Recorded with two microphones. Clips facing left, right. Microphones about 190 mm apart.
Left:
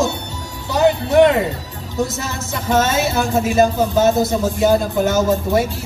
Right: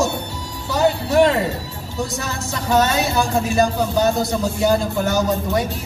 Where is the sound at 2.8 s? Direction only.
20° left (ahead or behind).